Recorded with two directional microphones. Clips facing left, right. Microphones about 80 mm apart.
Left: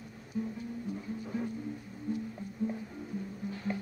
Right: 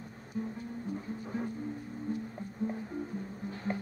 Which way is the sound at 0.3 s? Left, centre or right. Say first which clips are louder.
Left 1 dB; right.